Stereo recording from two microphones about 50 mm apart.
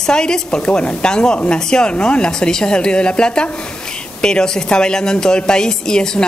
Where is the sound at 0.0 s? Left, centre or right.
Centre.